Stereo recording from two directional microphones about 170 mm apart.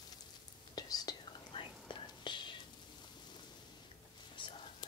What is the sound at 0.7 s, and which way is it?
Whispering, 25° left (ahead or behind).